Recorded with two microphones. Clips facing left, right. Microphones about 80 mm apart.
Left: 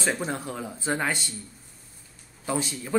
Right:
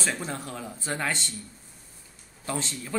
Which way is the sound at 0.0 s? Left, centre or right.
Centre.